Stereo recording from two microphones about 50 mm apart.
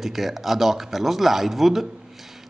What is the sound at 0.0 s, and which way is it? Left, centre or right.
A man's voice, centre.